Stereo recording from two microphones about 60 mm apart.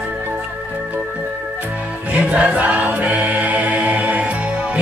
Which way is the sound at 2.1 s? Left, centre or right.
Right.